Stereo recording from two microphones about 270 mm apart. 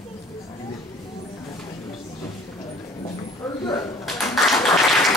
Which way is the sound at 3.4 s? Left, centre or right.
Centre.